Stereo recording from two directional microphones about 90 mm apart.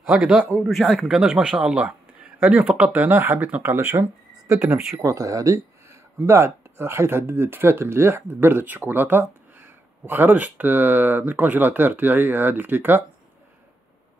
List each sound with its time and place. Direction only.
0.7 s speech: centre (ahead or behind); by 3.9 s 20° right (ahead or behind)
3.9 s speech: 35° right (ahead or behind)